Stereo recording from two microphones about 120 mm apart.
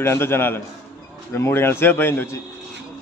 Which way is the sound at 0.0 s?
20° left (ahead or behind).